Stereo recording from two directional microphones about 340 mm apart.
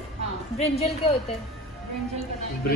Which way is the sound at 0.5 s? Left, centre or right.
Centre.